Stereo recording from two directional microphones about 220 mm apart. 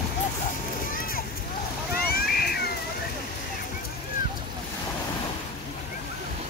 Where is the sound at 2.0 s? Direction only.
45° left (ahead or behind).